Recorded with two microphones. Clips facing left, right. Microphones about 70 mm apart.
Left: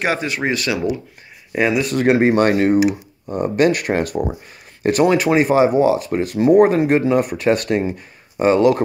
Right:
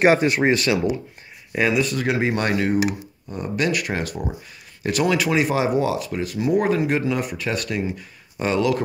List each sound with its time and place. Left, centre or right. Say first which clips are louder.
0.0 s speech: right 4 dB; right
0.7 s speech: even; centre
1.9 s speech: left 7 dB; left
5.0 s speech: left 5 dB; left
5.9 s speech: left 6 dB; left
7.2 s speech: left 9 dB; left
8.4 s speech: left 7 dB; left